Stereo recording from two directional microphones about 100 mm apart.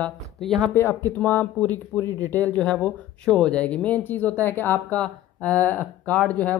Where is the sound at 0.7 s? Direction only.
25° left (ahead or behind).